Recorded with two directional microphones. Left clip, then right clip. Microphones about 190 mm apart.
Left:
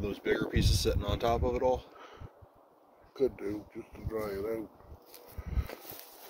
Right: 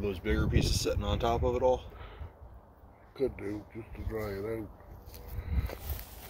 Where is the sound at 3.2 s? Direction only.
20° left (ahead or behind).